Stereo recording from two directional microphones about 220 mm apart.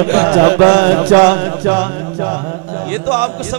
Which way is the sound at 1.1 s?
20° right (ahead or behind).